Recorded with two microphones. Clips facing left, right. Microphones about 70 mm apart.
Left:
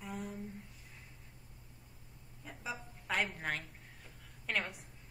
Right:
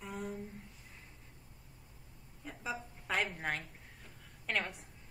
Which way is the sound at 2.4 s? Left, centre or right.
Centre.